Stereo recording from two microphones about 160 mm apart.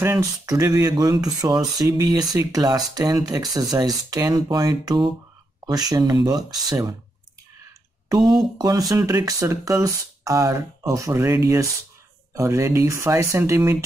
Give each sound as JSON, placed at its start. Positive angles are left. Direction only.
{"t": 0.0, "sound": "speech", "side_deg": -20}
{"t": 8.1, "sound": "speech", "side_deg": -25}